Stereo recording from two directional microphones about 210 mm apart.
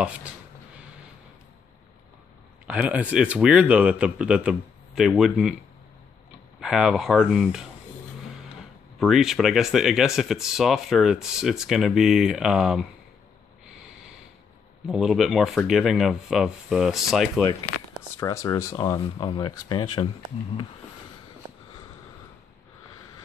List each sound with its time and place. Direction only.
0.0 s speech: 5° right (ahead or behind)
2.6 s speech: 5° right (ahead or behind)
6.6 s speech: 5° right (ahead or behind)
9.0 s speech: centre (ahead or behind)
14.9 s speech: centre (ahead or behind)
18.2 s speech: 15° left (ahead or behind)